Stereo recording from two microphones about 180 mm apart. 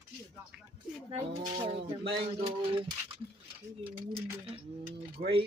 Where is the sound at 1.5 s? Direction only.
30° right (ahead or behind).